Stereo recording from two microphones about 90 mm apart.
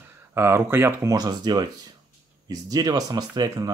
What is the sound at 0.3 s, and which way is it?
Speech, 30° right (ahead or behind).